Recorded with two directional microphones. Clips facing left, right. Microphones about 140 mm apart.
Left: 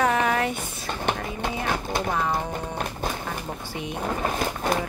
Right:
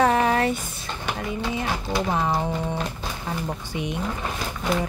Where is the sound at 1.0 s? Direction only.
55° left (ahead or behind).